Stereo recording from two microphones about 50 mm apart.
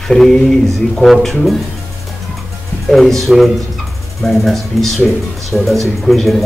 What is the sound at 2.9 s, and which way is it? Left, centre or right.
A man's voice, centre.